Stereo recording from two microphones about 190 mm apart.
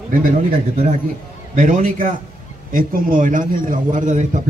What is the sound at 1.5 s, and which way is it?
A man's voice, 40° right (ahead or behind).